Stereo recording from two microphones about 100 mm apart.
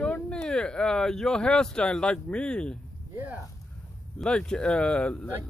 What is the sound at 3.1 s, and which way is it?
Speech, 15° right (ahead or behind).